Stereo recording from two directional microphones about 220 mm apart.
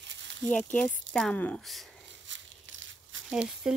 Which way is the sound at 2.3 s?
60° right (ahead or behind).